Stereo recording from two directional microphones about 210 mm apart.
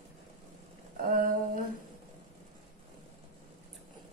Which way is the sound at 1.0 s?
40° right (ahead or behind).